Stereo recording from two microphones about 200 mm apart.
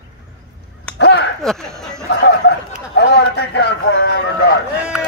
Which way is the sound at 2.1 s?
55° left (ahead or behind).